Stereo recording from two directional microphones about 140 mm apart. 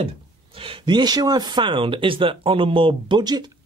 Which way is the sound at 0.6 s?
40° right (ahead or behind).